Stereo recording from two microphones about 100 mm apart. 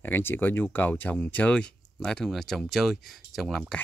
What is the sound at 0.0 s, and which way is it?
Speech, 20° left (ahead or behind).